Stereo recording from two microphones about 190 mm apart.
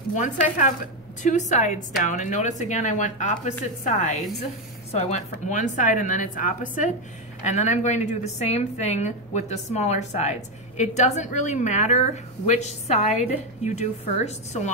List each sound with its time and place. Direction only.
0.1 s a woman's voice: 40° left (ahead or behind)